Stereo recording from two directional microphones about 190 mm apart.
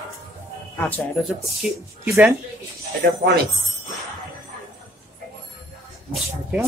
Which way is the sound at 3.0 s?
60° right (ahead or behind).